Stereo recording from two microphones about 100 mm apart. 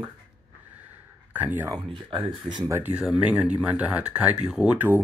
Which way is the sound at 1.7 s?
50° right (ahead or behind).